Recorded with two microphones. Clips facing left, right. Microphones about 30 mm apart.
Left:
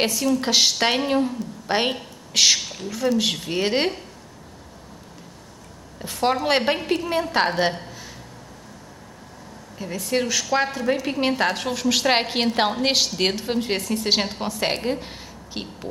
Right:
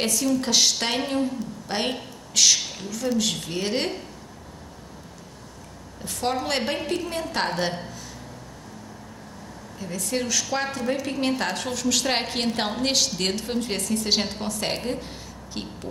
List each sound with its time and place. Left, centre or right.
0.0 s a woman's voice: centre
2.6 s speech: centre
3.4 s a woman's voice: left
5.9 s a woman's voice: centre
9.8 s a woman's voice: centre